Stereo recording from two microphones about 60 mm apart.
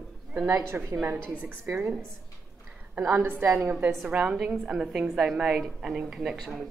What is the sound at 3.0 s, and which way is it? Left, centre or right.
Speech, right.